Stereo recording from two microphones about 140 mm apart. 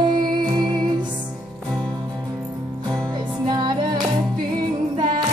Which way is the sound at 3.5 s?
30° right (ahead or behind).